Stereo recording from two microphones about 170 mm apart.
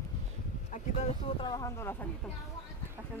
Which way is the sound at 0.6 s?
45° left (ahead or behind).